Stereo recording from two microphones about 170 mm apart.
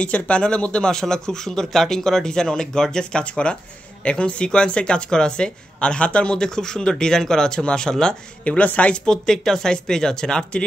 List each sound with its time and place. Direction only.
0.0 s speech: 5° left (ahead or behind)